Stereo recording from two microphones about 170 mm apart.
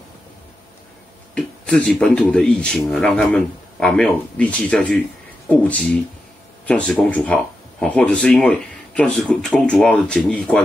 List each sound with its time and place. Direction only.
1.3 s speech: 5° left (ahead or behind)